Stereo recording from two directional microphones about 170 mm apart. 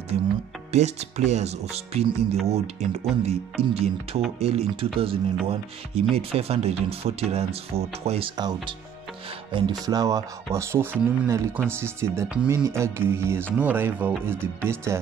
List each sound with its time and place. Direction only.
0.7 s speech: 40° right (ahead or behind)
8.4 s speech: 25° right (ahead or behind)